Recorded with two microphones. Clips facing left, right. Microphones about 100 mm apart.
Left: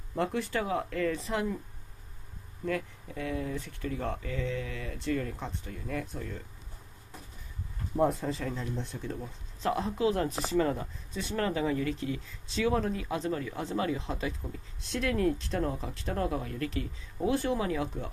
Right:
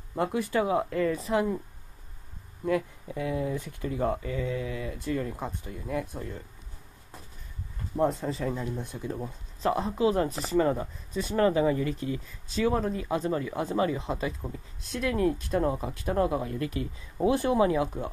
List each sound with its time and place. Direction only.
0.1 s speech: 10° right (ahead or behind)
1.1 s speech: 5° right (ahead or behind)
2.6 s speech: 15° right (ahead or behind)
7.9 s speech: centre (ahead or behind)
8.5 s speech: 15° right (ahead or behind)